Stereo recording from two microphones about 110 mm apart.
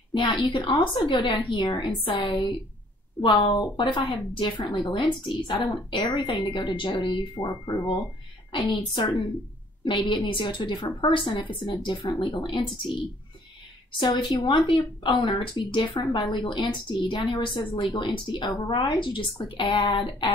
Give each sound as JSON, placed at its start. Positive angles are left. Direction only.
{"t": 0.1, "sound": "speech", "side_deg": 50}
{"t": 7.3, "sound": "speech", "side_deg": 35}
{"t": 13.9, "sound": "speech", "side_deg": 45}